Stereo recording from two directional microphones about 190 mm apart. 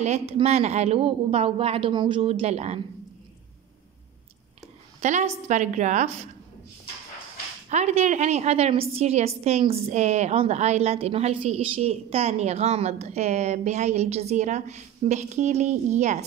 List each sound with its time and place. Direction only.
0.0 s a woman's voice: 35° right (ahead or behind)
5.0 s a woman's voice: 40° right (ahead or behind)
7.7 s a woman's voice: 35° right (ahead or behind)